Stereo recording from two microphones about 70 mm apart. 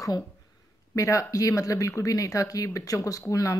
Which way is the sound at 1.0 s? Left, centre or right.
Left.